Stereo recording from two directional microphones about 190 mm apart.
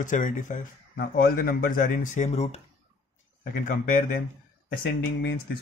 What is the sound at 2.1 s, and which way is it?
Speech, 35° left (ahead or behind).